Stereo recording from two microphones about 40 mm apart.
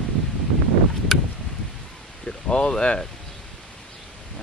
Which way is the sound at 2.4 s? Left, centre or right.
Left.